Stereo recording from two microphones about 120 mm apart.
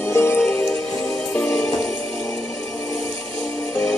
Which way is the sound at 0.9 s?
25° left (ahead or behind).